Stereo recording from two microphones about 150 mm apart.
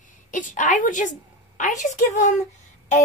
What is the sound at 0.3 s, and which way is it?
A woman's voice, 60° left (ahead or behind).